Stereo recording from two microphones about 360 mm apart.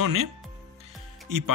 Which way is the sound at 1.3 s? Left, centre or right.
Right.